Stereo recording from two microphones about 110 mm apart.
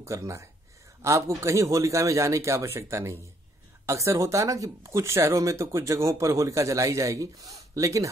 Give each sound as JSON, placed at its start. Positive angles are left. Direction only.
{"t": 0.0, "sound": "speech", "side_deg": -25}